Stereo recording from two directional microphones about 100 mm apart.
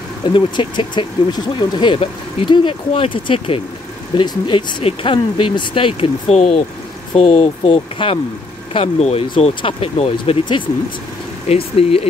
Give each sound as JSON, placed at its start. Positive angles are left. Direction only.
{"t": 0.3, "sound": "speech", "side_deg": 50}
{"t": 4.1, "sound": "speech", "side_deg": 55}
{"t": 8.7, "sound": "speech", "side_deg": 85}
{"t": 9.4, "sound": "speech", "side_deg": 70}
{"t": 11.4, "sound": "speech", "side_deg": 80}